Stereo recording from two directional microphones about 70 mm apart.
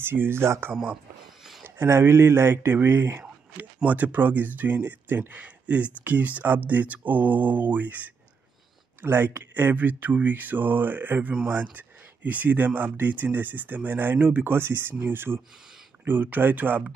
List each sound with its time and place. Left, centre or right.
0.0 s speech: right